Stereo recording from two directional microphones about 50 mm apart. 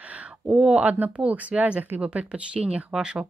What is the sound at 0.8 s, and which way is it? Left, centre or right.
Speech, right.